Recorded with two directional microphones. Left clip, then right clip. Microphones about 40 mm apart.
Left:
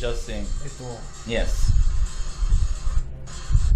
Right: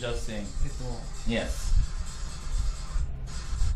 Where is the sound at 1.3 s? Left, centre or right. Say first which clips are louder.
Left 4 dB; left.